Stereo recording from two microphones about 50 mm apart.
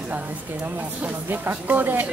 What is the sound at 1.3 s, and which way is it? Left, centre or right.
Speech, right.